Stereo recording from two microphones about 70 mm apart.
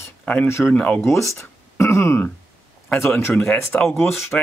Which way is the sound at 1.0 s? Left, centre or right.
Left.